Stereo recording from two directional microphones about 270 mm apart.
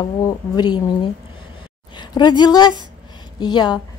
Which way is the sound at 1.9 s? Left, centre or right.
Centre.